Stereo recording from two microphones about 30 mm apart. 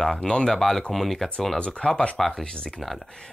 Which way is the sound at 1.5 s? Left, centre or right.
Left.